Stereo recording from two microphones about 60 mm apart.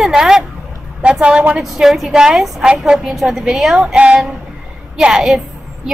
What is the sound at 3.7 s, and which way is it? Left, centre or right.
A woman's voice, centre.